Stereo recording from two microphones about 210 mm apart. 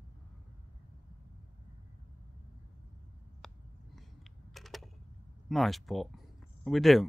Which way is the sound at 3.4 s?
Centre (ahead or behind).